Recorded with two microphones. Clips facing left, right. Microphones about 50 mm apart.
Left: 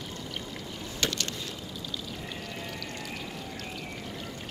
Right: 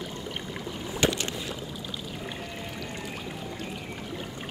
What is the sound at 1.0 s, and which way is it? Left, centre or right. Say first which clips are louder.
Boat: right 5 dB; centre.